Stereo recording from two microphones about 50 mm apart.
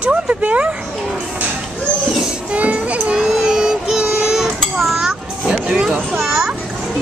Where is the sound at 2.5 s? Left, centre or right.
Right.